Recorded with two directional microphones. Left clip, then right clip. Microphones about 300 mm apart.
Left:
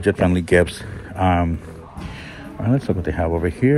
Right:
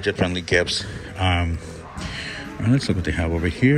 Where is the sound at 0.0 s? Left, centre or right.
Centre.